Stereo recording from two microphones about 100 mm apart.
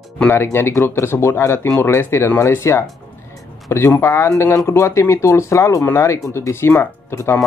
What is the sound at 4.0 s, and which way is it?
Speech, 25° left (ahead or behind).